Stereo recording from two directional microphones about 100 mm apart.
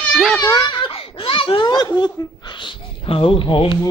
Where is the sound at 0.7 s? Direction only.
65° left (ahead or behind).